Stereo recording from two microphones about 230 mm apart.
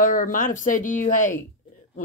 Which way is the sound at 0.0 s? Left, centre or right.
Left.